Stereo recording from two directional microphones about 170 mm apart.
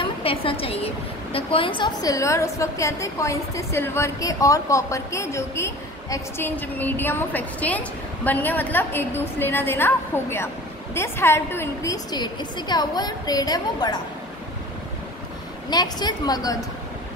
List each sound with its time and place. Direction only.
0.0 s a woman's voice: 35° left (ahead or behind)
15.7 s a woman's voice: 25° left (ahead or behind)